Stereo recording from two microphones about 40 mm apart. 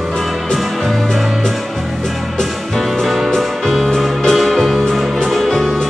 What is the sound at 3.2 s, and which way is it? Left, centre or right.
Music, centre.